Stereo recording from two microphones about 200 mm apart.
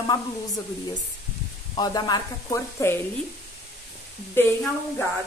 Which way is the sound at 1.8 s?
20° left (ahead or behind).